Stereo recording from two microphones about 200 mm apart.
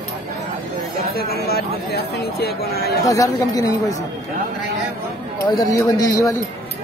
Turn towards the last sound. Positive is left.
turn(degrees=20)  # may be behind; listen again after turning